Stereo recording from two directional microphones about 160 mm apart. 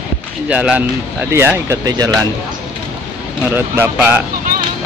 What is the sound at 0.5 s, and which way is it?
Speech, 10° right (ahead or behind).